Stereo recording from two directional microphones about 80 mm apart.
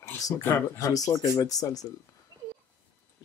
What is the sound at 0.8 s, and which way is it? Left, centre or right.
Speech, left.